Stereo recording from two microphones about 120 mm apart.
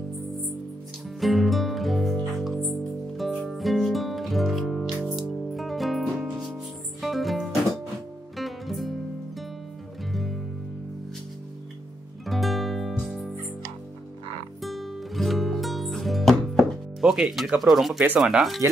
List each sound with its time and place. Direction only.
1.2 s music: centre (ahead or behind)
10.1 s music: centre (ahead or behind)
12.3 s music: centre (ahead or behind)
14.6 s music: centre (ahead or behind)
18.2 s speech: centre (ahead or behind)